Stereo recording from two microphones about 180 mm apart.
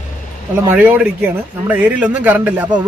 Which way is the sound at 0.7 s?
10° right (ahead or behind).